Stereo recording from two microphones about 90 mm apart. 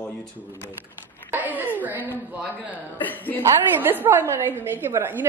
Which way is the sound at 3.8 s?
25° right (ahead or behind).